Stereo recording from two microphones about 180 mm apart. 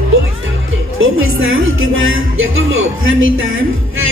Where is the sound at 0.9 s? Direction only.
90° right.